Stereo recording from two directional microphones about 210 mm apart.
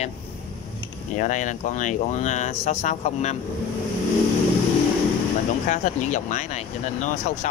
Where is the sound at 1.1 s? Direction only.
35° left (ahead or behind).